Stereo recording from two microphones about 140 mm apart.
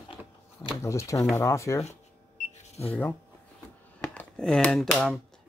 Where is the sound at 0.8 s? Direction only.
20° left (ahead or behind).